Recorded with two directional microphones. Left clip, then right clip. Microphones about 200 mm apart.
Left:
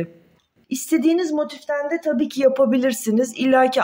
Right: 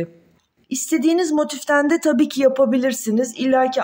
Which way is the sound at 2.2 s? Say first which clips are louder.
Left 3 dB; 5° right (ahead or behind).